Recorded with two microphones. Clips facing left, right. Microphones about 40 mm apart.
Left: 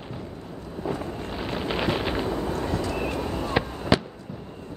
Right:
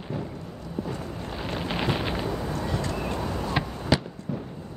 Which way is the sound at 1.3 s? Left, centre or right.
Centre.